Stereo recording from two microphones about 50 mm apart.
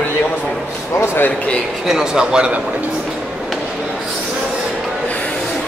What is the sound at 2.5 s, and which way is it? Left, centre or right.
Speech, right.